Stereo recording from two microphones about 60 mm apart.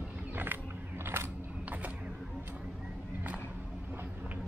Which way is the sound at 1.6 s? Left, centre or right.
Right.